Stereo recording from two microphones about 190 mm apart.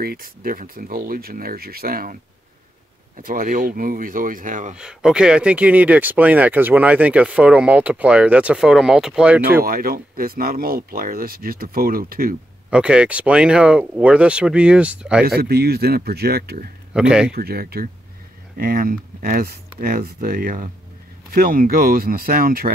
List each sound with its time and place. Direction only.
0.0 s speech: 50° right (ahead or behind)
3.2 s speech: 50° right (ahead or behind)
4.7 s speech: 5° right (ahead or behind)
9.7 s speech: 50° right (ahead or behind)
12.6 s speech: 5° right (ahead or behind)
15.2 s speech: 55° right (ahead or behind)
16.9 s speech: 5° right (ahead or behind)
17.3 s speech: 55° right (ahead or behind)